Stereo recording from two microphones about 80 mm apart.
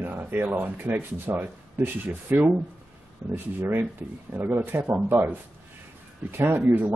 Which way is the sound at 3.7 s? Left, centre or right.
Right.